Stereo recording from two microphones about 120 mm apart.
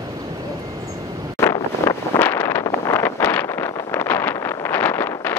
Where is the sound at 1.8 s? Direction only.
15° left (ahead or behind).